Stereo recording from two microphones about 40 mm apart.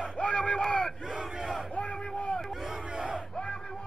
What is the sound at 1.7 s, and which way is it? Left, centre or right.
Crowd, left.